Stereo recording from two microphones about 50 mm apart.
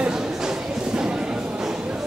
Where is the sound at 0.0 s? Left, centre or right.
Centre.